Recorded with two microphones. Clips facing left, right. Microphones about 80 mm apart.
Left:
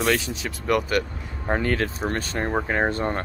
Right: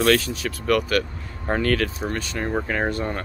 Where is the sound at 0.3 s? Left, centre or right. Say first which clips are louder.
Right 2 dB; left.